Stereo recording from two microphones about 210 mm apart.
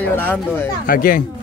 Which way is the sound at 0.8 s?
40° left (ahead or behind).